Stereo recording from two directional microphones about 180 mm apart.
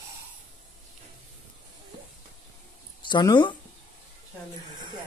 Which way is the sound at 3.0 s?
25° left (ahead or behind).